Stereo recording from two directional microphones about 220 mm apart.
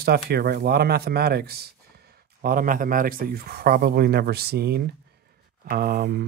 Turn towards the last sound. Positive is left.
turn(degrees=-45)  # may be behind; listen again after turning